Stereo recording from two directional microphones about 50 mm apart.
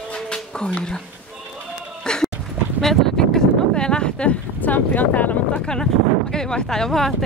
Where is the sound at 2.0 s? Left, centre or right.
Centre.